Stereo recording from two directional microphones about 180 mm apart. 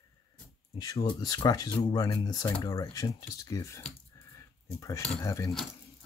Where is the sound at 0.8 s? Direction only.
20° left (ahead or behind).